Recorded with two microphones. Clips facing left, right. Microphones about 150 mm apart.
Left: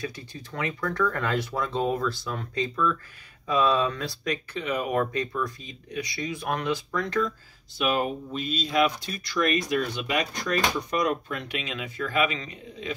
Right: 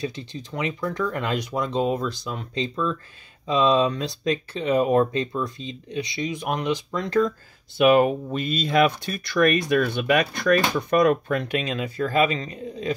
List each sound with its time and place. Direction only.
0.0 s speech: 20° right (ahead or behind)
7.7 s speech: 65° right (ahead or behind); by 12.9 s 40° right (ahead or behind)